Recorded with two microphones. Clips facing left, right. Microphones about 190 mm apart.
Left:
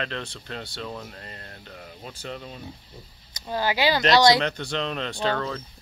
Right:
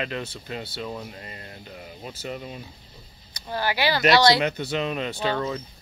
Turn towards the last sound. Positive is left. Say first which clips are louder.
# right 1 dB
turn(degrees=-5)  # may be behind; listen again after turning